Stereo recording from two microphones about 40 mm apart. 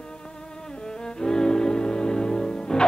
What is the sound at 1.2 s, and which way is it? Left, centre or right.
Music, centre.